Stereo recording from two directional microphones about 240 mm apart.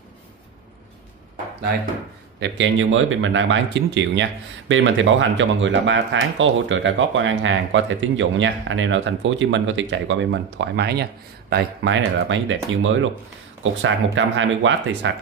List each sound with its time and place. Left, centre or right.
2.4 s speech: right